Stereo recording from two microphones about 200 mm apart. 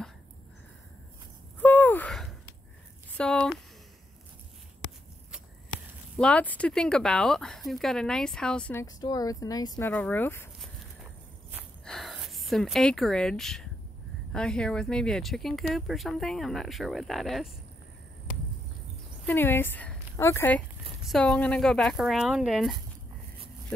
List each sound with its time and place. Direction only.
1.6 s a sound: 10° left (ahead or behind)
3.2 s speech: 5° left (ahead or behind)
6.1 s speech: 5° left (ahead or behind)
8.8 s speech: 20° left (ahead or behind)
11.8 s a sound: centre (ahead or behind)
14.3 s speech: 5° left (ahead or behind)
19.2 s speech: 10° left (ahead or behind)